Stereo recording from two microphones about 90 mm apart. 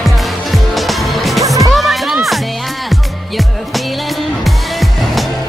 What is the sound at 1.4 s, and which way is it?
Music, 40° right (ahead or behind).